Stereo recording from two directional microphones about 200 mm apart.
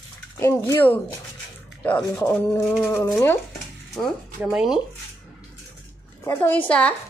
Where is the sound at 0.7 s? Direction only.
10° left (ahead or behind).